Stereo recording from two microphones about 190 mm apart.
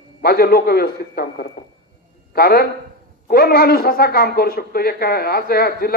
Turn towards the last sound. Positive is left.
turn(degrees=55)  # may be behind; listen again after turning